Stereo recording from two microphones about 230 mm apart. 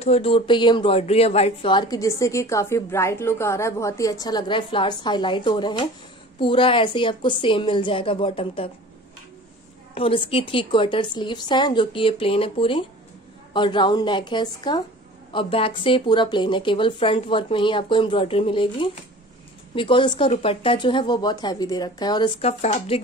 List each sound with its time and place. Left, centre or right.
0.0 s a woman's voice: left
9.9 s a woman's voice: left